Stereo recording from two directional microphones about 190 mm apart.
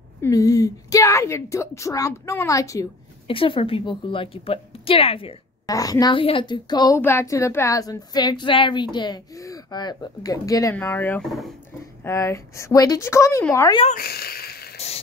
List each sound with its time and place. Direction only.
0.2 s a woman's voice: 15° left (ahead or behind)
3.3 s a woman's voice: 30° left (ahead or behind)
5.7 s a woman's voice: 20° left (ahead or behind); by 11.5 s centre (ahead or behind)
12.0 s a woman's voice: 15° left (ahead or behind)
13.9 s a sound: 55° left (ahead or behind)